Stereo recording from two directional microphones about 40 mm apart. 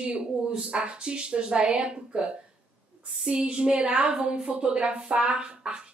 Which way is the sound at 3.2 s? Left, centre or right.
Right.